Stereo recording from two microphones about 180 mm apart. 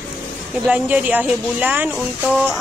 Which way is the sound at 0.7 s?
5° right (ahead or behind).